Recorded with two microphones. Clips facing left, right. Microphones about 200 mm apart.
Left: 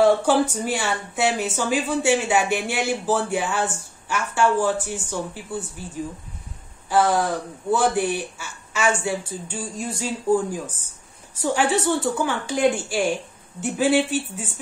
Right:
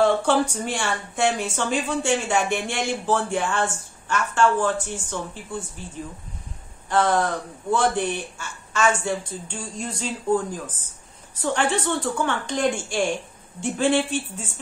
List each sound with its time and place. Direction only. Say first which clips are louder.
0.0 s speech: left 2 dB; 5° left (ahead or behind)
6.9 s speech: left 1 dB; 10° left (ahead or behind)